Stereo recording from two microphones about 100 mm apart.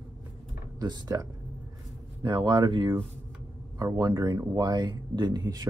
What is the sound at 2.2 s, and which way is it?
Speech, 50° right (ahead or behind).